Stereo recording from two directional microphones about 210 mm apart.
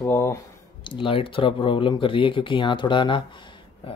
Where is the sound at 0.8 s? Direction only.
25° left (ahead or behind).